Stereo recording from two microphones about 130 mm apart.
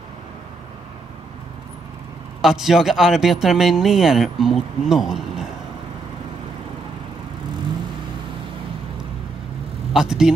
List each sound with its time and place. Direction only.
2.4 s speech: 5° right (ahead or behind)
9.9 s speech: 5° right (ahead or behind)